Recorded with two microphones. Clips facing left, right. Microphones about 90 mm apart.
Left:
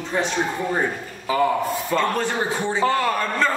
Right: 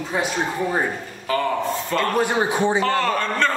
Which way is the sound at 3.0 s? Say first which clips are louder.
Even; 10° left (ahead or behind).